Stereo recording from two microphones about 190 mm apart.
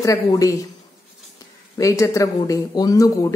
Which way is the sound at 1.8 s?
15° left (ahead or behind).